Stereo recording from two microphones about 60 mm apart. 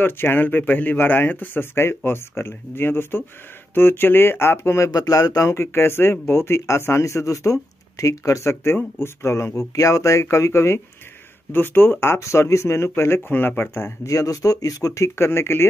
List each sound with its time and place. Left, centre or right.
0.0 s speech: left
5.5 s speech: left
9.8 s speech: left
11.5 s speech: left
12.2 s speech: left
13.3 s speech: left
14.0 s speech: left
15.1 s speech: left